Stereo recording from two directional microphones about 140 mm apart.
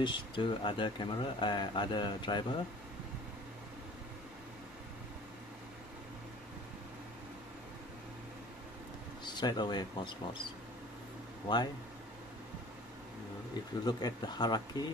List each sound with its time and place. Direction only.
0.0 s speech: 35° left (ahead or behind)
9.2 s speech: 30° left (ahead or behind)
11.4 s speech: 30° left (ahead or behind)
13.8 s speech: 30° left (ahead or behind)